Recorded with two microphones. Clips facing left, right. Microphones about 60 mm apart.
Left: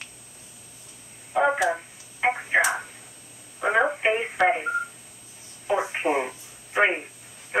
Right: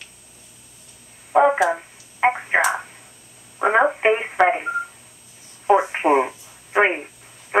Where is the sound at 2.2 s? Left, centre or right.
Right.